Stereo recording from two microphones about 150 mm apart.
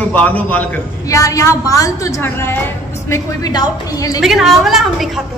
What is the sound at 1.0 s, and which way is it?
A woman's voice, 20° left (ahead or behind).